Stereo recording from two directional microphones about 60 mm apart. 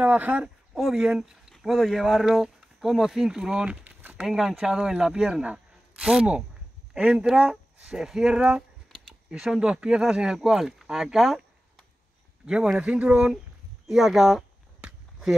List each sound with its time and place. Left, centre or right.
0.0 s speech: right
0.7 s speech: centre
1.5 s speech: centre
12.7 s speech: right
13.8 s speech: centre
14.8 s a sound: centre